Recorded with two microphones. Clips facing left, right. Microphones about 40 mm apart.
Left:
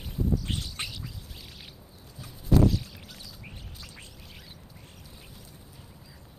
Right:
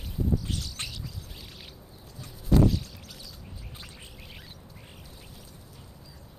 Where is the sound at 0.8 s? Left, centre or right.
Centre.